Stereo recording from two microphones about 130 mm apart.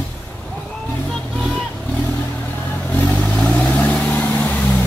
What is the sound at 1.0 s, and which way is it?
Music, centre (ahead or behind).